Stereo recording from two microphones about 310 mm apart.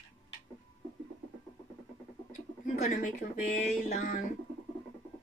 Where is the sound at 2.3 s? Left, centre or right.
Left.